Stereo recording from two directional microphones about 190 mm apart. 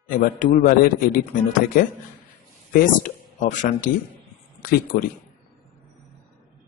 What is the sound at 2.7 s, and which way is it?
Speech, 50° left (ahead or behind).